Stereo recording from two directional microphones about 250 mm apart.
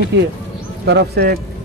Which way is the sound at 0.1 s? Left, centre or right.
Right.